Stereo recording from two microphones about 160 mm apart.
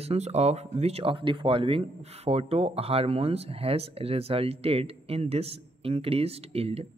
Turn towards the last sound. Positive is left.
turn(degrees=-40)  # may be behind; listen again after turning